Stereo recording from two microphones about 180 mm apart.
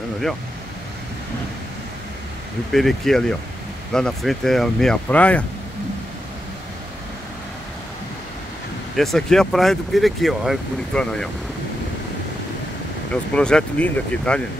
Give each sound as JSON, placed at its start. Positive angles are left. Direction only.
{"t": 2.7, "sound": "speech", "side_deg": 0}
{"t": 8.9, "sound": "speech", "side_deg": 0}
{"t": 13.1, "sound": "speech", "side_deg": 5}